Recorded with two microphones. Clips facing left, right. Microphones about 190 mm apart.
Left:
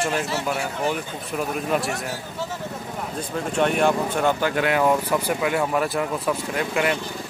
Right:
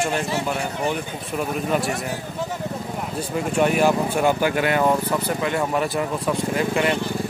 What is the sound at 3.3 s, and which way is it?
Speech, 5° right (ahead or behind).